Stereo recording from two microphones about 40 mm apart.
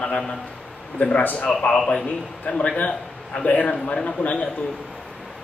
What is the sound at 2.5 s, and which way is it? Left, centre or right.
A man's voice, left.